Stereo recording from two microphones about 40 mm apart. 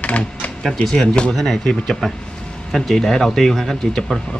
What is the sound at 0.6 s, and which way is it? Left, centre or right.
Speech, centre.